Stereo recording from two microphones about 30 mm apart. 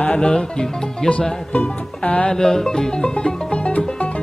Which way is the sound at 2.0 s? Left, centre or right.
Left.